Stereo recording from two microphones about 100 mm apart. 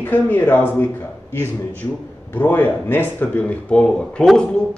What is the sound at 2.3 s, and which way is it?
Speech, 15° left (ahead or behind).